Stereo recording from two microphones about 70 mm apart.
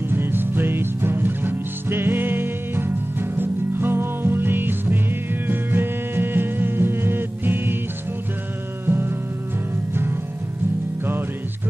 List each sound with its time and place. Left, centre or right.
0.1 s music: right
8.8 s music: right